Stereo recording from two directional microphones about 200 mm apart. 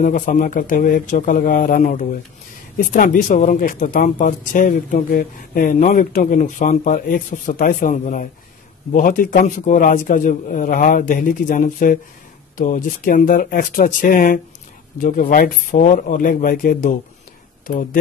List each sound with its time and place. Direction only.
0.0 s a man's voice: 40° left (ahead or behind)